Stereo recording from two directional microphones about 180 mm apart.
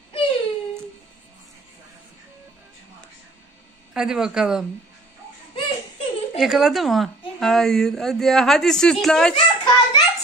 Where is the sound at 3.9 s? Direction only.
5° right (ahead or behind).